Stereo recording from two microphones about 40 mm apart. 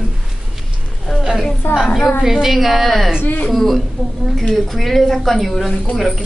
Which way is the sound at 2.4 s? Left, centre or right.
Centre.